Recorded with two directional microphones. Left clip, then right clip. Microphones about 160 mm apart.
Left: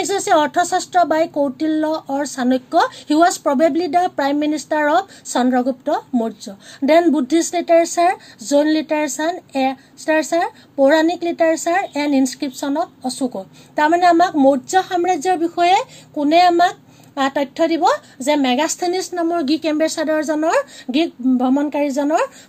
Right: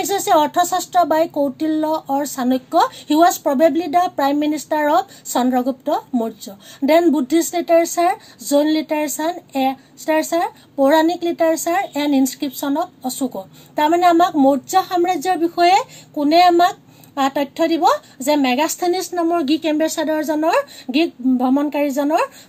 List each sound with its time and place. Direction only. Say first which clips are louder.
0.0 s speech: even; 25° left (ahead or behind)